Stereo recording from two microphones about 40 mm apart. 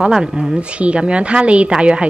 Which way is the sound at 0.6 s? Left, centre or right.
Right.